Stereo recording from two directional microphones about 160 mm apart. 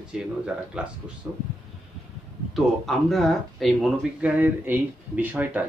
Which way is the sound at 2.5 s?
Centre (ahead or behind).